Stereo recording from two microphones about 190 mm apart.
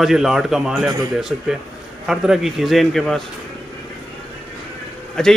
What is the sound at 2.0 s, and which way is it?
A man's voice, centre (ahead or behind).